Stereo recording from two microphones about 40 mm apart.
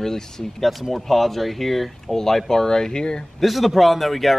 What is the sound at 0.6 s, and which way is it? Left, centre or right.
Speech, centre.